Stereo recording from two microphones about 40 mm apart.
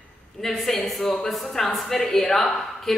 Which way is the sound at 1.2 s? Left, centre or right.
Centre.